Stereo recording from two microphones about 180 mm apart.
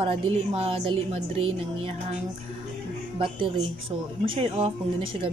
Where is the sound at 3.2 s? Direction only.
30° right (ahead or behind).